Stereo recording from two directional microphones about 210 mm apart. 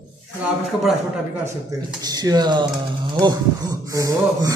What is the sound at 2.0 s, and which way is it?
Speech, 20° right (ahead or behind).